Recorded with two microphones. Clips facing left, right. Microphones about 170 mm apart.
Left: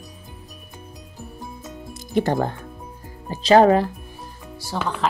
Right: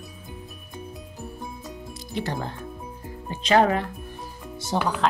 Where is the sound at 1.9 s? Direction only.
50° left (ahead or behind).